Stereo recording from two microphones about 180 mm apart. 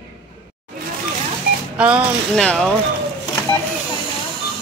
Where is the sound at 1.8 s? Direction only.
5° right (ahead or behind).